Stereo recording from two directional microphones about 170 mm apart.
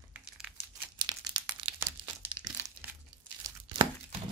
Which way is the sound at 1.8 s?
15° right (ahead or behind).